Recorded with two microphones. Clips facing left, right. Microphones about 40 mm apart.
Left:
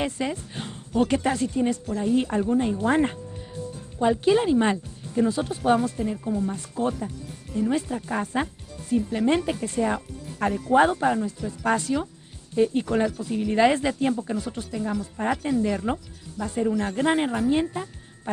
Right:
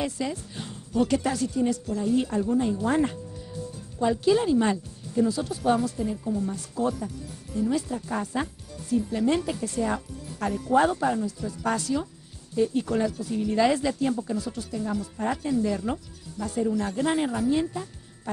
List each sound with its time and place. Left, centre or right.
0.0 s speech: left